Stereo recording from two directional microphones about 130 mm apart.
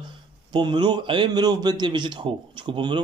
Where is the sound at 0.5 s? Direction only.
35° right (ahead or behind).